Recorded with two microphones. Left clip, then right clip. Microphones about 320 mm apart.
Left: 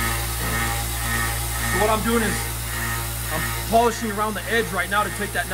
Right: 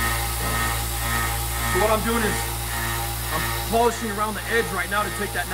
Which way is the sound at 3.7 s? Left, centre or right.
Centre.